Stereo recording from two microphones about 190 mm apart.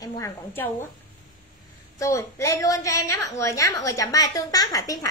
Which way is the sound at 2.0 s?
15° left (ahead or behind).